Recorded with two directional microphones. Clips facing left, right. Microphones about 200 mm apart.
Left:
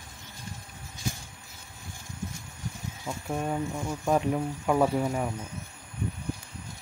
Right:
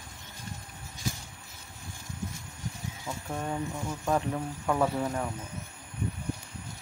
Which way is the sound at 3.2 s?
10° left (ahead or behind).